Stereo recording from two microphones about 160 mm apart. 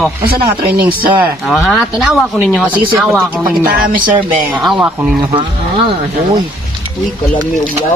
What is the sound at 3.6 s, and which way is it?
Speech, 60° right (ahead or behind).